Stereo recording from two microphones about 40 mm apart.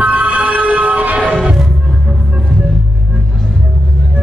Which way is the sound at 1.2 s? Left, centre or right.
Right.